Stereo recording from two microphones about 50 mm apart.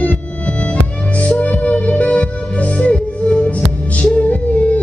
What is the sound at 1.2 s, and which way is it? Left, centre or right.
Music, left.